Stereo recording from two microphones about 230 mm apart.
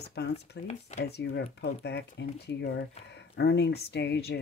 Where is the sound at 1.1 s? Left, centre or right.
Left.